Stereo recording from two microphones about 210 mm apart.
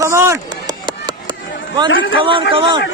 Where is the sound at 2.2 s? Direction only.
25° right (ahead or behind).